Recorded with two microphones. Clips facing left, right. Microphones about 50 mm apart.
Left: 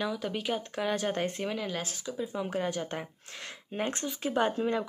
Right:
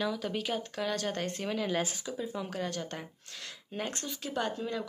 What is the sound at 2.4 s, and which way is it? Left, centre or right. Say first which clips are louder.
Speech: left 4 dB; centre.